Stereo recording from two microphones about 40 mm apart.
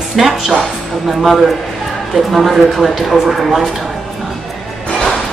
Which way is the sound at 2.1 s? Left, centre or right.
Centre.